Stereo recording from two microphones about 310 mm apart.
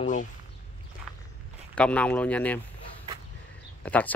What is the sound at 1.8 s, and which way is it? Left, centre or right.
Speech, centre.